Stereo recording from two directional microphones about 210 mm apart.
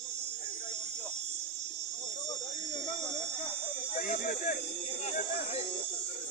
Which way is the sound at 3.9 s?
40° left (ahead or behind).